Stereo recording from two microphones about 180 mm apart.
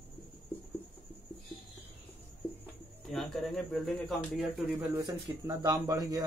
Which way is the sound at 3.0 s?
Centre (ahead or behind).